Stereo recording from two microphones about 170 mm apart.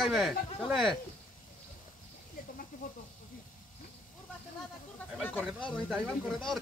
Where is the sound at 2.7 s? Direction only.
55° left (ahead or behind).